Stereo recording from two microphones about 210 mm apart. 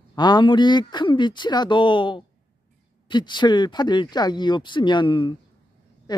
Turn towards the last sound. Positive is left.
turn(degrees=20)  # may be behind; listen again after turning